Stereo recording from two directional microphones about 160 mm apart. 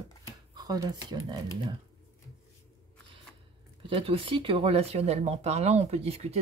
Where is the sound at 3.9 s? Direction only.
35° right (ahead or behind).